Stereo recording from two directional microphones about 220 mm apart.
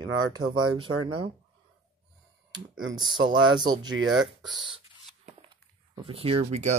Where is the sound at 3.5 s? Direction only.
20° right (ahead or behind).